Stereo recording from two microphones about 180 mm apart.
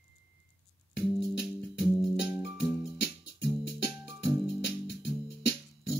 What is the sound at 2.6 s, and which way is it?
Music, 70° left (ahead or behind).